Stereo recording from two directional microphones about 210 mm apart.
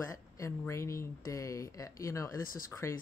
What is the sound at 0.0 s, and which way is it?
Speech, 15° left (ahead or behind).